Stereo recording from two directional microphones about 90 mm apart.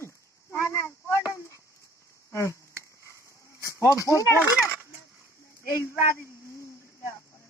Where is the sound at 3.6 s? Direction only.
30° left (ahead or behind).